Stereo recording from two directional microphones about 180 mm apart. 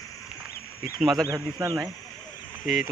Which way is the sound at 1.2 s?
15° right (ahead or behind).